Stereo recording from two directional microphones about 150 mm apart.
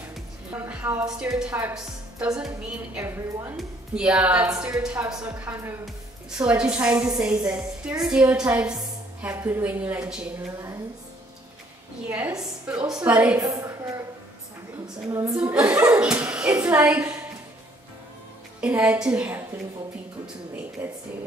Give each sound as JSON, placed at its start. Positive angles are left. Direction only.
{"t": 0.5, "sound": "a woman's voice", "side_deg": -10}
{"t": 3.0, "sound": "a woman's voice", "side_deg": -15}
{"t": 3.5, "sound": "a woman's voice", "side_deg": -5}
{"t": 12.4, "sound": "a woman's voice", "side_deg": -5}
{"t": 13.4, "sound": "a sound", "side_deg": -20}
{"t": 15.0, "sound": "speech", "side_deg": -20}
{"t": 15.9, "sound": "speech", "side_deg": -10}
{"t": 18.6, "sound": "a woman's voice", "side_deg": -10}
{"t": 20.8, "sound": "a woman's voice", "side_deg": -15}